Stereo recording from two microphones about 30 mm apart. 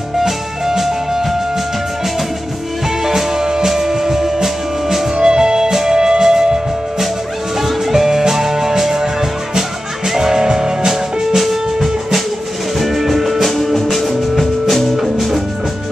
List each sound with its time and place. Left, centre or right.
0.2 s music: centre
3.0 s music: centre
7.5 s music: centre
11.3 s music: centre
13.5 s music: centre
14.0 s music: centre